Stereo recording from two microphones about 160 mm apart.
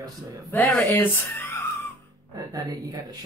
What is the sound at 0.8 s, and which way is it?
Speech, 15° left (ahead or behind).